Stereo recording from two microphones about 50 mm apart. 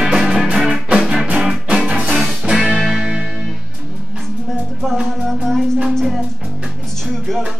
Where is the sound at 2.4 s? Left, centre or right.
Centre.